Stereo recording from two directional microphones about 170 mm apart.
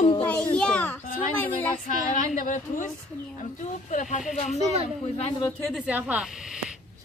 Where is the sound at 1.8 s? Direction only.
50° left (ahead or behind).